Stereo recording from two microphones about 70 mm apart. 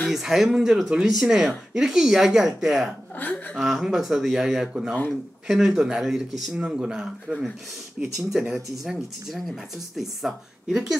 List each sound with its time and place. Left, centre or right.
0.1 s speech: centre
3.2 s speech: left
3.5 s speech: centre